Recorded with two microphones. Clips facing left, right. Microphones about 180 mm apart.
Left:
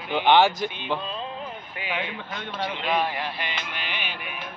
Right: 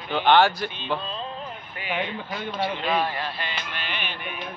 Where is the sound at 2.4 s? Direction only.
10° right (ahead or behind).